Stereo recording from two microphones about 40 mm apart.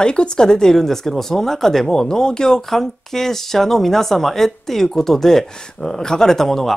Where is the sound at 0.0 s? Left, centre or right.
Left.